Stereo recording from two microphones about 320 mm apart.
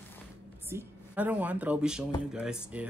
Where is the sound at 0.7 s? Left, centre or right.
Centre.